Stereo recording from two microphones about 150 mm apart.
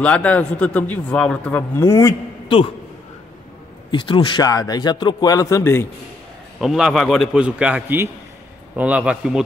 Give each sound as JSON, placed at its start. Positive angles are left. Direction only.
{"t": 0.0, "sound": "a man's voice", "side_deg": 10}
{"t": 2.4, "sound": "a man's voice", "side_deg": 35}
{"t": 3.9, "sound": "speech", "side_deg": 35}
{"t": 6.6, "sound": "a man's voice", "side_deg": 0}